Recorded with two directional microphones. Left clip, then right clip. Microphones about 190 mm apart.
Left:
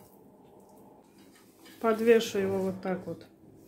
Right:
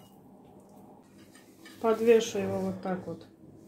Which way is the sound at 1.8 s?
30° left (ahead or behind).